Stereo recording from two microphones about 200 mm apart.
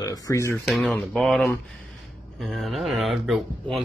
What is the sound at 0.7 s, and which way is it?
Speech, centre (ahead or behind).